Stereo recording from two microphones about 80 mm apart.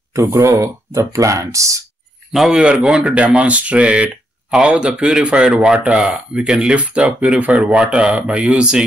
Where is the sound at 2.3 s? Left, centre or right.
Centre.